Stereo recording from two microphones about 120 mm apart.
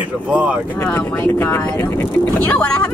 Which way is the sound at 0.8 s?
20° left (ahead or behind).